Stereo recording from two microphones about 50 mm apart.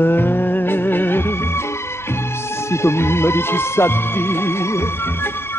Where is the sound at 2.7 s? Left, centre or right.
Left.